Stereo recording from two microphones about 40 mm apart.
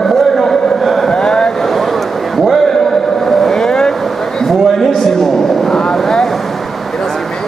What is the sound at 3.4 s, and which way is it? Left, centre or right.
Vehicle, centre.